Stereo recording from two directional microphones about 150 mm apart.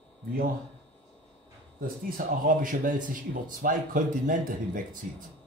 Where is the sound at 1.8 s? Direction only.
65° right (ahead or behind).